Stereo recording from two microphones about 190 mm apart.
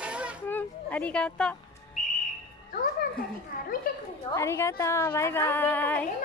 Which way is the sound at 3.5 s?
45° left (ahead or behind).